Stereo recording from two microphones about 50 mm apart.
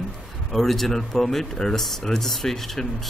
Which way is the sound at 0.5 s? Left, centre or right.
Centre.